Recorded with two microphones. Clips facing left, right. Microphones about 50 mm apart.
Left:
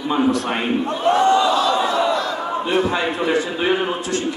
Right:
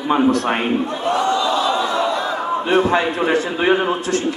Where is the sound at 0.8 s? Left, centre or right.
Left.